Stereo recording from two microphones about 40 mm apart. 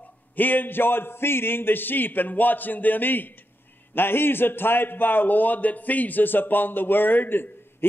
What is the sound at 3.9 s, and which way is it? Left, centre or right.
A man's voice, left.